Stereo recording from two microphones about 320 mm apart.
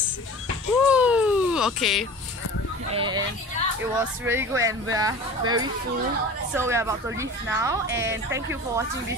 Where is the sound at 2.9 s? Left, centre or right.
Centre.